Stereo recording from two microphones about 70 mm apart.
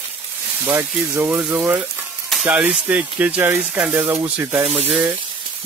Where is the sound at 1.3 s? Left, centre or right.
Centre.